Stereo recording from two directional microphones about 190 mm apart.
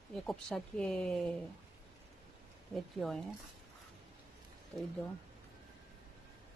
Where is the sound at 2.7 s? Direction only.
Centre (ahead or behind).